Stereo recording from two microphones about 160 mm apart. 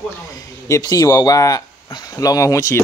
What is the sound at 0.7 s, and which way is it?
Speech, 25° left (ahead or behind).